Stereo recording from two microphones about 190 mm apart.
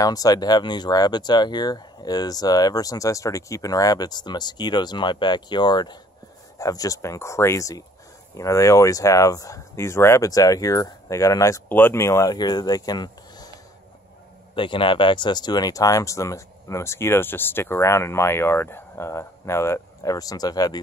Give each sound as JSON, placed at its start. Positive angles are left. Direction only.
{"t": 0.0, "sound": "speech", "side_deg": 20}
{"t": 14.5, "sound": "speech", "side_deg": 25}